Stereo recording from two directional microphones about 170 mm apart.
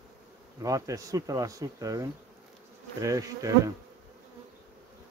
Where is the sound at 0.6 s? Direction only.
20° right (ahead or behind).